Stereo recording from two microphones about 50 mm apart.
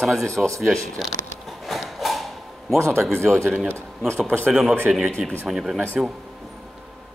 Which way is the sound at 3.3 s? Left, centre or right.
Centre.